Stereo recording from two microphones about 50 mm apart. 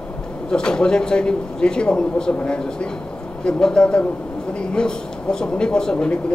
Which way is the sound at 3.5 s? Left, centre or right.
Centre.